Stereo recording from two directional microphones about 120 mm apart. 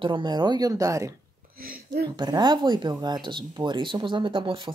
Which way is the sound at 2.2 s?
35° right (ahead or behind).